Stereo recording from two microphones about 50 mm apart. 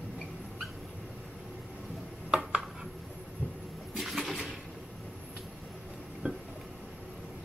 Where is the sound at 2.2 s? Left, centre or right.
Centre.